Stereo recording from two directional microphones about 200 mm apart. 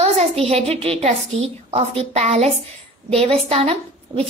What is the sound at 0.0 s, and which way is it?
A woman's voice, 30° right (ahead or behind).